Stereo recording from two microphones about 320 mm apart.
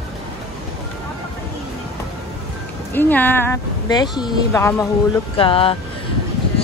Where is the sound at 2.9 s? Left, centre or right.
Centre.